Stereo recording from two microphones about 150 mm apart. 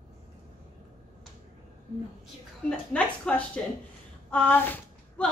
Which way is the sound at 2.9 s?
10° left (ahead or behind).